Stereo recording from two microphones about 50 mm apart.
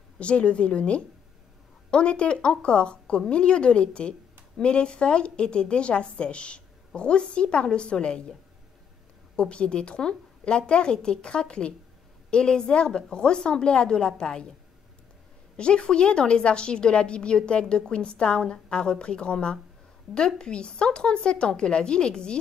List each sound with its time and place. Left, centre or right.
0.2 s a woman's voice: left
9.4 s a woman's voice: centre
15.5 s a woman's voice: centre